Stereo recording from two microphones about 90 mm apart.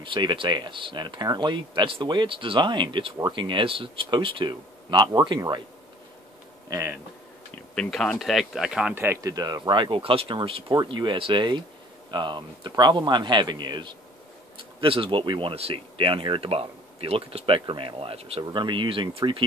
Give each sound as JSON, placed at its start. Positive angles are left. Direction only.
{"t": 0.0, "sound": "speech", "side_deg": -65}
{"t": 3.3, "sound": "speech", "side_deg": -65}
{"t": 6.7, "sound": "speech", "side_deg": -45}
{"t": 7.7, "sound": "speech", "side_deg": 10}
{"t": 8.9, "sound": "speech", "side_deg": -25}
{"t": 9.2, "sound": "speech", "side_deg": -45}
{"t": 10.8, "sound": "speech", "side_deg": -60}
{"t": 14.6, "sound": "speech", "side_deg": -75}
{"t": 18.4, "sound": "speech", "side_deg": -60}